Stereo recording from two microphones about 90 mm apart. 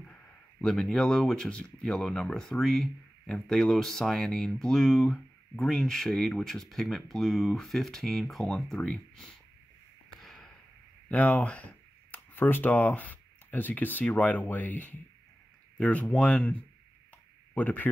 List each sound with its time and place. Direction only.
0.0 s speech: 10° left (ahead or behind)
10.0 s a sound: 5° left (ahead or behind)
11.1 s speech: 15° left (ahead or behind)